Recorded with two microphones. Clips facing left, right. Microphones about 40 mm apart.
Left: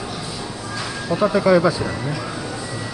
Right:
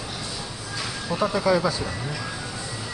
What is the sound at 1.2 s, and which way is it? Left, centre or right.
Speech, left.